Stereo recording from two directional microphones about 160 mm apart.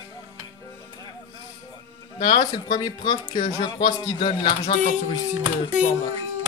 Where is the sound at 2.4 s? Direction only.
25° left (ahead or behind).